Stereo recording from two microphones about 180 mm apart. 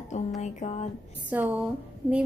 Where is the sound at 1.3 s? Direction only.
10° right (ahead or behind).